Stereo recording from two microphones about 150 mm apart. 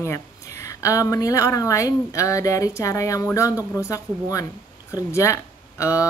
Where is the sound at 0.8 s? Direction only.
20° left (ahead or behind).